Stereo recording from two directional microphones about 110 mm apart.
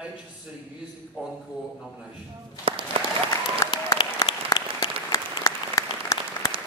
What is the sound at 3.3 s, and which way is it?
Applause, 35° left (ahead or behind).